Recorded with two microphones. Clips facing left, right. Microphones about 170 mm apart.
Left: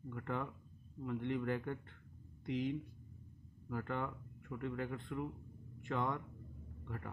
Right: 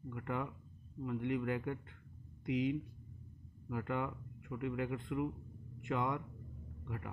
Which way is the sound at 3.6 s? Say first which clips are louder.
Right 2 dB; 10° right (ahead or behind).